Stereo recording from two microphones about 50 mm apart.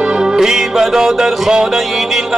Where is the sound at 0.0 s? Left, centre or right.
Centre.